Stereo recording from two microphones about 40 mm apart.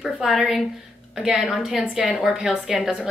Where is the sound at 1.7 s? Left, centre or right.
Centre.